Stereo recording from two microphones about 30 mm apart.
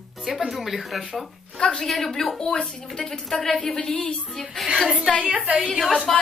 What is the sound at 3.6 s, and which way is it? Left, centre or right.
Speech, left.